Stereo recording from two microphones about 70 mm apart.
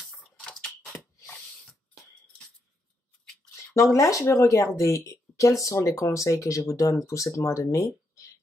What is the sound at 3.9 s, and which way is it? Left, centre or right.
Speech, left.